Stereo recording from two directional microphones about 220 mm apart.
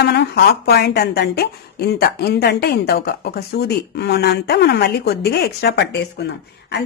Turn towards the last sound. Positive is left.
turn(degrees=50)  # may be behind; listen again after turning